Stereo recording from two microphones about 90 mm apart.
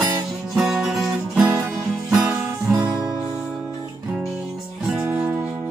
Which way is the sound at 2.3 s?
25° right (ahead or behind).